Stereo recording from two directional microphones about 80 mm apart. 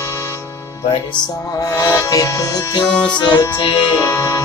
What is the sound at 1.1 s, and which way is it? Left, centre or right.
Music, left.